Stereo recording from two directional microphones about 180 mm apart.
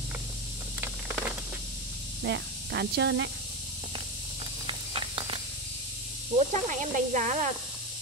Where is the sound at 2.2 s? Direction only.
70° right (ahead or behind).